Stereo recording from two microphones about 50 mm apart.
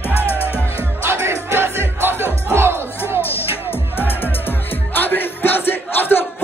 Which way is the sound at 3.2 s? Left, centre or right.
Left.